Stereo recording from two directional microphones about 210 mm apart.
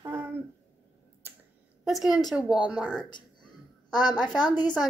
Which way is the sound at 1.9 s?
Centre (ahead or behind).